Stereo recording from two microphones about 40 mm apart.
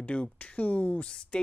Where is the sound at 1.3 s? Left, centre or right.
Left.